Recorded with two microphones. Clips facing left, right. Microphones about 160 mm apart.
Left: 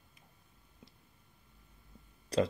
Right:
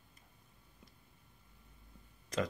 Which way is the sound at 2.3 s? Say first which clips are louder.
Left 6 dB; 35° left (ahead or behind).